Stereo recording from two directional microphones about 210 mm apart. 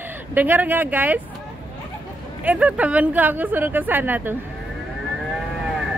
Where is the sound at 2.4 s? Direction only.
5° right (ahead or behind).